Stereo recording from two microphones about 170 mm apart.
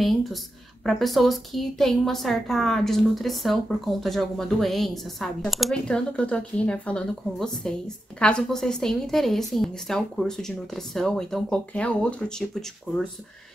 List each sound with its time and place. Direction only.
0.0 s a woman's voice: centre (ahead or behind)